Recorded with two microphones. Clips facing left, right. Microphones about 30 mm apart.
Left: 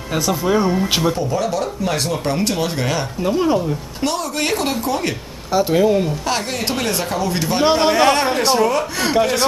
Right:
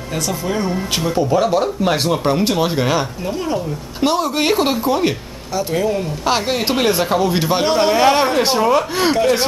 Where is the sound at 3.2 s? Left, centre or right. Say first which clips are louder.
Left 4 dB; centre.